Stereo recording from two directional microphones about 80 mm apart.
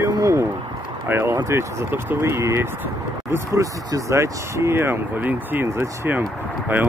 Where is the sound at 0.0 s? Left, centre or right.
Right.